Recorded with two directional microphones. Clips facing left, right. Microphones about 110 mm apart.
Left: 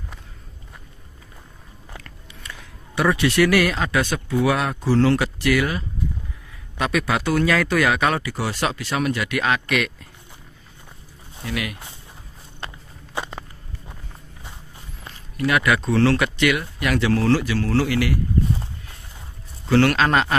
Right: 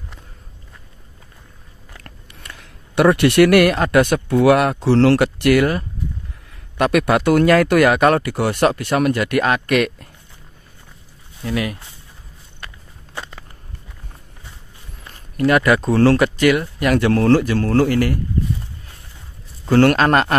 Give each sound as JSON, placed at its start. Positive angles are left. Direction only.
{"t": 2.9, "sound": "speech", "side_deg": -60}
{"t": 11.4, "sound": "speech", "side_deg": -35}
{"t": 12.5, "sound": "walk", "side_deg": 20}
{"t": 15.3, "sound": "speech", "side_deg": -45}
{"t": 19.7, "sound": "speech", "side_deg": -45}